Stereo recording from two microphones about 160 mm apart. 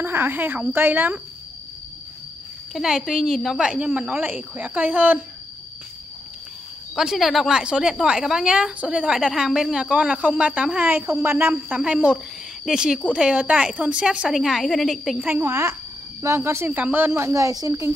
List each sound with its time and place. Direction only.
0.0 s speech: 15° right (ahead or behind)
2.7 s speech: 5° right (ahead or behind)
7.0 s a woman's voice: centre (ahead or behind)
15.2 s speech: 15° right (ahead or behind)